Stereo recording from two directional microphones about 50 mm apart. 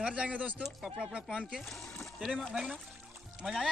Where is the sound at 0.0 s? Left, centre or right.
Right.